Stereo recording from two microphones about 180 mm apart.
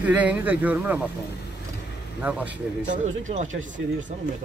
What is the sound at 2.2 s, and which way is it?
Speech, 10° right (ahead or behind).